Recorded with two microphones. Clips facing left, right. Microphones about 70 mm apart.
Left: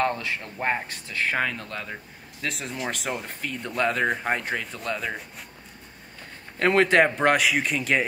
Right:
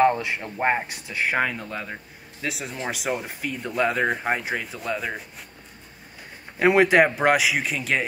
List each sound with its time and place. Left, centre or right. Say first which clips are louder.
0.0 s speech: right 6 dB; centre
6.6 s speech: right 2 dB; centre